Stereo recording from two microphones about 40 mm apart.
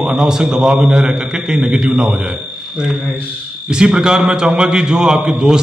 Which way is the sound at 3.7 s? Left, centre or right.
Centre.